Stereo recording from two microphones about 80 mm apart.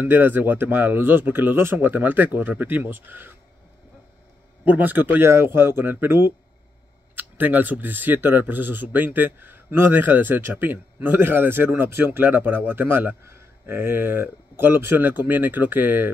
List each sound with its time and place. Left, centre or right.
0.0 s speech: right
4.6 s speech: right